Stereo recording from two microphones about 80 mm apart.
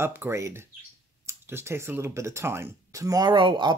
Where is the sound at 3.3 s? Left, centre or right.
Right.